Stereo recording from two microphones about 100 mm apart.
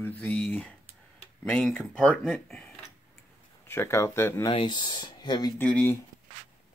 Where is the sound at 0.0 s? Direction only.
20° left (ahead or behind).